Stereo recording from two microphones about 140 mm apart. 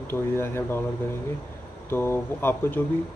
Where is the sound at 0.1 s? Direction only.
15° left (ahead or behind).